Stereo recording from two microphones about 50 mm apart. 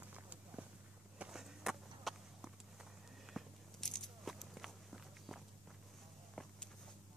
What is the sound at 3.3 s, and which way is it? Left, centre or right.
Biting, centre.